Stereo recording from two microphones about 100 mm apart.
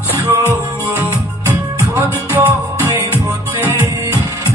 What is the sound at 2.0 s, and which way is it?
Music, 20° right (ahead or behind).